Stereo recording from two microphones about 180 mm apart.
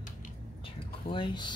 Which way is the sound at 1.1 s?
25° left (ahead or behind).